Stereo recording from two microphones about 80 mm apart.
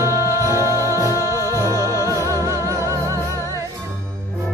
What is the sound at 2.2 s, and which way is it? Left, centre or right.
Music, right.